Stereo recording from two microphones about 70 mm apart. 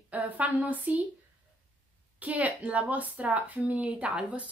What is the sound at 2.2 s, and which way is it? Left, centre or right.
Speech, right.